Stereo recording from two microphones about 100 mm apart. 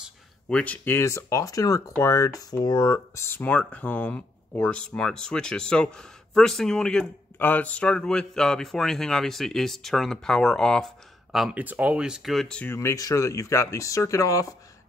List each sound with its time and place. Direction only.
0.5 s speech: 10° left (ahead or behind)
0.8 s speech: 30° left (ahead or behind); by 10.9 s 5° left (ahead or behind)
11.5 s speech: 15° right (ahead or behind)
12.4 s speech: 10° left (ahead or behind)
12.7 s speech: 30° left (ahead or behind)